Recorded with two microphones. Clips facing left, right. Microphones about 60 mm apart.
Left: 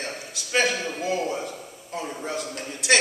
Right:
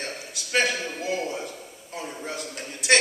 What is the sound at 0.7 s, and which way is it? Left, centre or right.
Speech, centre.